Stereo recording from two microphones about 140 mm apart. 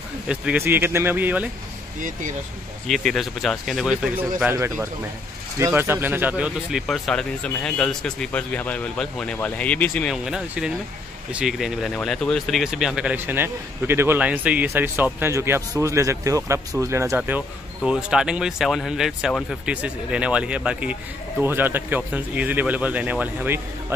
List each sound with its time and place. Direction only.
0.3 s speech: 10° right (ahead or behind)
2.0 s speech: 70° right (ahead or behind)
2.9 s speech: centre (ahead or behind)
6.9 s speech: 5° left (ahead or behind)
10.1 s speech: 5° right (ahead or behind)
17.8 s speech: 5° right (ahead or behind)